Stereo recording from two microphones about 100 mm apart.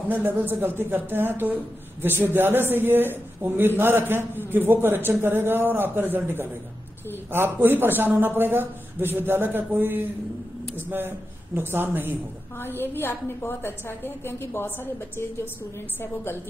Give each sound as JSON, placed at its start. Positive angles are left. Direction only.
{"t": 0.1, "sound": "speech", "side_deg": -20}
{"t": 12.5, "sound": "a woman's voice", "side_deg": 20}